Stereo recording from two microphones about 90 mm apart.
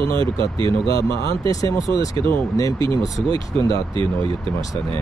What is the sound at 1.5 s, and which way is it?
Speech, 40° left (ahead or behind).